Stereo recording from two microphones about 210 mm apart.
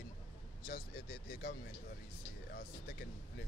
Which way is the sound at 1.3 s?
45° left (ahead or behind).